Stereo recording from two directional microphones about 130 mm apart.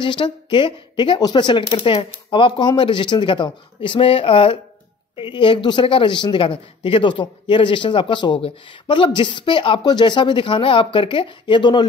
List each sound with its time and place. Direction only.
0.0 s speech: 40° left (ahead or behind)